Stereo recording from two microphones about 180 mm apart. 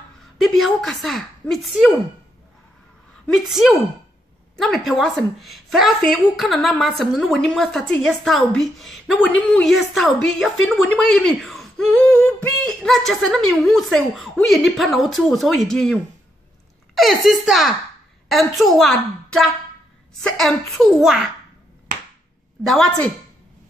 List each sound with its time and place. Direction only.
0.4 s a woman's voice: centre (ahead or behind)
3.3 s a woman's voice: centre (ahead or behind)
22.6 s a woman's voice: centre (ahead or behind)